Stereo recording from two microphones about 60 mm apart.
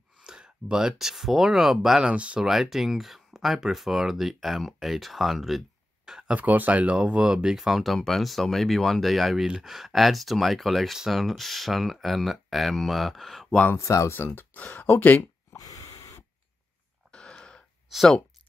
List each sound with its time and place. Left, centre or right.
0.2 s speech: centre
2.4 s speech: centre
6.0 s a sound: centre
6.3 s speech: right; by 13.6 s centre
13.7 s speech: left
14.1 s speech: left
15.5 s snort: left
17.1 s a sound: centre
17.9 s speech: centre